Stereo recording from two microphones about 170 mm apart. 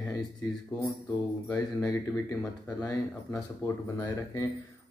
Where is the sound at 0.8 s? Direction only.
10° left (ahead or behind).